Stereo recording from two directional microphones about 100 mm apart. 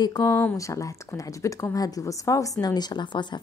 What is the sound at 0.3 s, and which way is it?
Speech, 20° left (ahead or behind).